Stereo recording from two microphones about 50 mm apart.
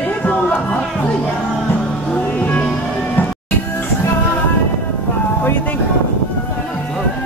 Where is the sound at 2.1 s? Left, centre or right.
Left.